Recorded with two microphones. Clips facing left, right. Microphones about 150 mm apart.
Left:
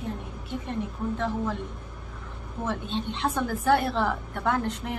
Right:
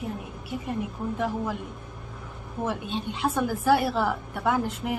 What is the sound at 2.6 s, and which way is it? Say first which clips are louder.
A woman's voice: right 1 dB; 10° right (ahead or behind).